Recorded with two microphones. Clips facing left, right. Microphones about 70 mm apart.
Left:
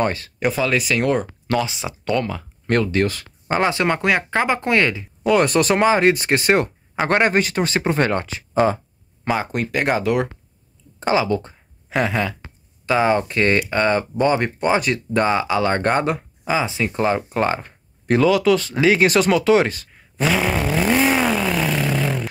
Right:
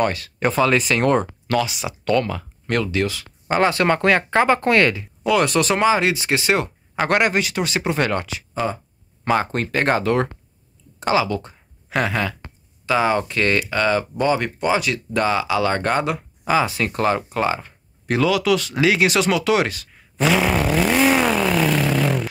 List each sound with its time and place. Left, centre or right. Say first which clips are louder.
0.0 s speech: even; left
0.4 s speech: right 2 dB; centre
1.5 s speech: even; left
2.0 s speech: right 2 dB; centre
2.6 s speech: left 3 dB; left
3.5 s speech: right 1 dB; centre
5.2 s speech: left 2 dB; left
7.1 s speech: left 2 dB; left
9.2 s speech: right 2 dB; centre
11.0 s speech: left 1 dB; left
11.9 s speech: left 1 dB; centre
20.2 s speech: right 2 dB; centre
20.8 s speech: even; centre
21.2 s vehicle: right 1 dB; centre